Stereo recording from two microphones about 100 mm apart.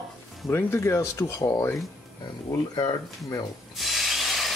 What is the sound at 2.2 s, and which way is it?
Speech, 45° left (ahead or behind).